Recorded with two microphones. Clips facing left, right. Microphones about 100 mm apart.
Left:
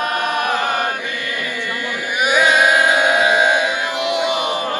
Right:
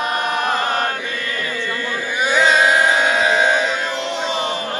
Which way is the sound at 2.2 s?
15° left (ahead or behind).